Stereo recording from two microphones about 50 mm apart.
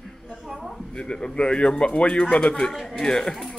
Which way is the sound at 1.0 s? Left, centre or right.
Centre.